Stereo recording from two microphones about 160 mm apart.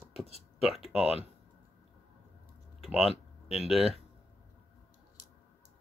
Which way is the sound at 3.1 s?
40° left (ahead or behind).